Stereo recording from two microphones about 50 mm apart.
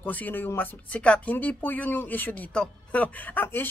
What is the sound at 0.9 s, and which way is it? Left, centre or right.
Speech, left.